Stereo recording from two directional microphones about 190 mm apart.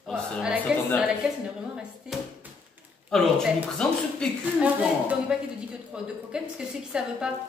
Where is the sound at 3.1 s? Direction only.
Centre (ahead or behind).